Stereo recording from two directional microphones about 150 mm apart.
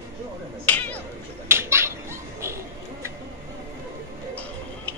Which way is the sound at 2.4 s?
20° right (ahead or behind).